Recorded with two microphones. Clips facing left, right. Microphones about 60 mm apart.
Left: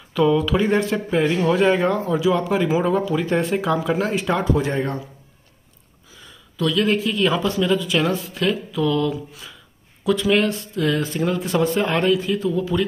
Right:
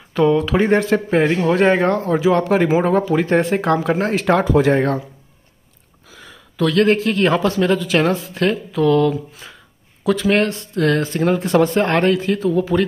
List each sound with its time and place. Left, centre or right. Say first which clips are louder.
0.1 s speech: right 2 dB; right
2.0 s speech: right 4 dB; right
4.1 s speech: right 5 dB; right
6.1 s speech: right 5 dB; right
8.7 s speech: right 8 dB; right
10.2 s speech: right 2 dB; right
12.4 s speech: right 4 dB; right